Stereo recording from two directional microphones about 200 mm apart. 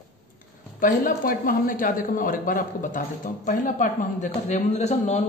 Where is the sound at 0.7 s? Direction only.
45° left (ahead or behind).